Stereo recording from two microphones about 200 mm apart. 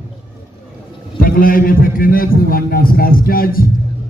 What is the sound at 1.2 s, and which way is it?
A man's voice, 45° left (ahead or behind).